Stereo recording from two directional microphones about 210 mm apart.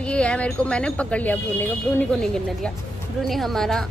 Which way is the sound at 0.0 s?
5° left (ahead or behind).